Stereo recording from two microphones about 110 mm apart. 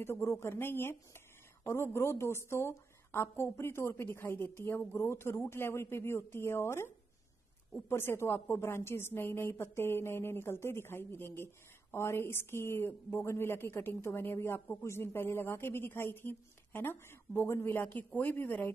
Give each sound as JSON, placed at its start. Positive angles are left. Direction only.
{"t": 0.0, "sound": "a woman's voice", "side_deg": 20}
{"t": 7.9, "sound": "a woman's voice", "side_deg": 20}